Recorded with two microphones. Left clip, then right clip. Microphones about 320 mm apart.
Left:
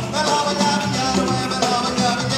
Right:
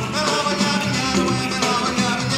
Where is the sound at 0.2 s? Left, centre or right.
Left.